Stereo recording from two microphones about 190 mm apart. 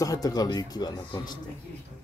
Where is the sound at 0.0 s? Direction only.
20° left (ahead or behind).